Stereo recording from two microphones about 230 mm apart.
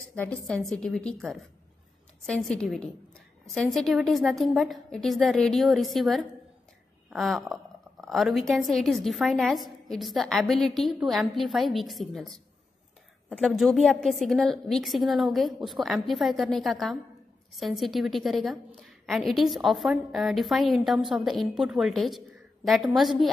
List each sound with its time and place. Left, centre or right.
0.1 s a woman's voice: centre